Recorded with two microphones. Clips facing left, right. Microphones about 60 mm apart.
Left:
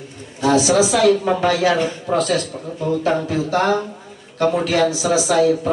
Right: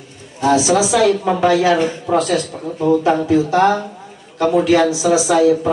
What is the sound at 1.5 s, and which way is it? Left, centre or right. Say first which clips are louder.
Speech: right 3 dB; right.